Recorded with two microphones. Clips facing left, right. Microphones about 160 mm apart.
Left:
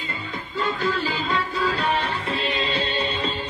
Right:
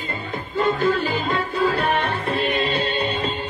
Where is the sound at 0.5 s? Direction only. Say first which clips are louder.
Right 5 dB; 50° right (ahead or behind).